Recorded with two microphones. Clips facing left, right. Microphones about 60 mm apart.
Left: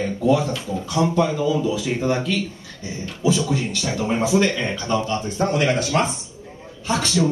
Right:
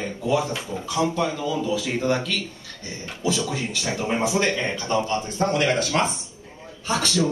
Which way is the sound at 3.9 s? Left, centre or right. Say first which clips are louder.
Left 2 dB; centre.